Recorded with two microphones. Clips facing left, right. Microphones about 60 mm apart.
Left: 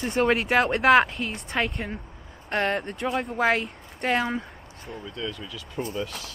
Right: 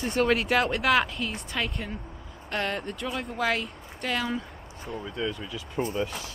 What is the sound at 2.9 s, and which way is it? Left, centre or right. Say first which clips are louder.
Speech: left 5 dB; left.